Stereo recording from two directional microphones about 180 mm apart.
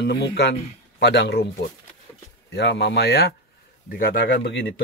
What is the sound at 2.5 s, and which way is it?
Speech, 70° left (ahead or behind).